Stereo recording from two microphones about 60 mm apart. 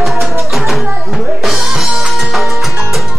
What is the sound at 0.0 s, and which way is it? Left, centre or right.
Music, centre.